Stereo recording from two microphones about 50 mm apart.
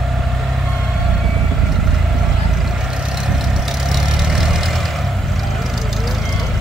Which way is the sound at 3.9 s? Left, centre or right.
Centre.